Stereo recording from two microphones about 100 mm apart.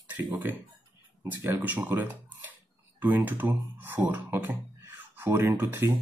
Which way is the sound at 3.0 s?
20° right (ahead or behind).